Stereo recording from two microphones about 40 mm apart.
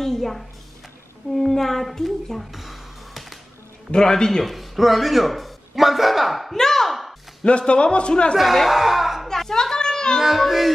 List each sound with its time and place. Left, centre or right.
0.0 s a sound: centre
1.3 s speech: centre
3.9 s a man's voice: centre
4.5 s a man's voice: centre
6.5 s a sound: centre
7.4 s a man's voice: left
8.4 s speech: centre
9.3 s music: centre
10.2 s speech: centre